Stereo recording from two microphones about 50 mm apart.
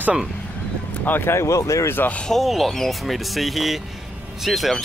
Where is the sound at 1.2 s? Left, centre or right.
Left.